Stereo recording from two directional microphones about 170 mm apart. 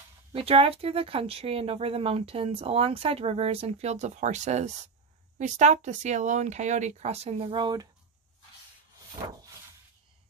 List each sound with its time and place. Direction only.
0.3 s speech: 35° right (ahead or behind)